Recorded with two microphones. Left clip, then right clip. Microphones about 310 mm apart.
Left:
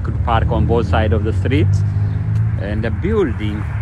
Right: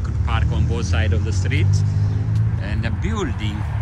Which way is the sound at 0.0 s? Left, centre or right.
Centre.